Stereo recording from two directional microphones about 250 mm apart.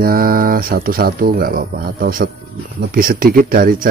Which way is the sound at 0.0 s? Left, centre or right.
Right.